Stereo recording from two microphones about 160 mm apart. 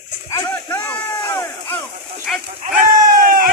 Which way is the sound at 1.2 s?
20° left (ahead or behind).